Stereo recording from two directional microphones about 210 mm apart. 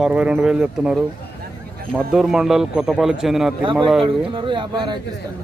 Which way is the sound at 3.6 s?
25° right (ahead or behind).